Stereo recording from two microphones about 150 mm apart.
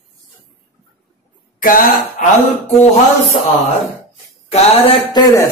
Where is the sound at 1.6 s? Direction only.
70° left (ahead or behind).